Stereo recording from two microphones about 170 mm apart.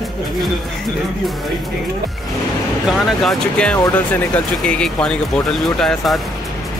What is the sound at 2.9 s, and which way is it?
Speech, 5° left (ahead or behind).